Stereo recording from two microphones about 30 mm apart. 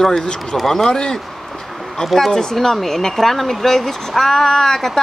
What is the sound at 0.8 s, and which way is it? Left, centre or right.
Speech, left.